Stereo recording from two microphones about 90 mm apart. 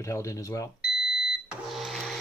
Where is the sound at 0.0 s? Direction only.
35° left (ahead or behind).